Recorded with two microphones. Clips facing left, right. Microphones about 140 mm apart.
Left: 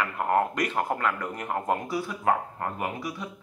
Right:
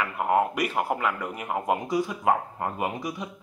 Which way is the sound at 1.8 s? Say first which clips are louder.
Right 2 dB; 20° right (ahead or behind).